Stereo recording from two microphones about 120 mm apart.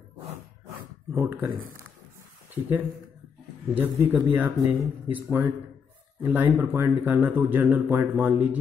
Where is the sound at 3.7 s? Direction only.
15° right (ahead or behind).